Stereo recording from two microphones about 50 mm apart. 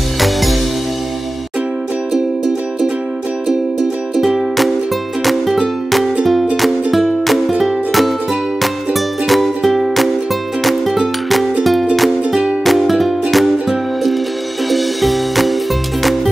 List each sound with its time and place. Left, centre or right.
0.2 s music: centre
2.1 s music: centre
4.2 s music: centre
9.3 s music: centre